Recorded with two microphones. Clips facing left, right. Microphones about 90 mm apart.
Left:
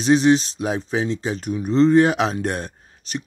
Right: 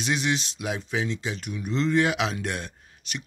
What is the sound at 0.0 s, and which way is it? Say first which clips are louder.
Speech: left 11 dB; 35° left (ahead or behind).